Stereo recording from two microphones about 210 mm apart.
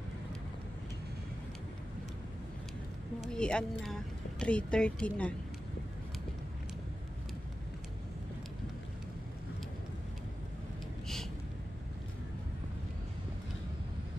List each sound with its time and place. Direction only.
3.2 s speech: 5° left (ahead or behind)